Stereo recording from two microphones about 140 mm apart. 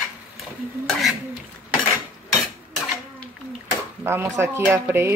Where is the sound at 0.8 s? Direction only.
Centre (ahead or behind).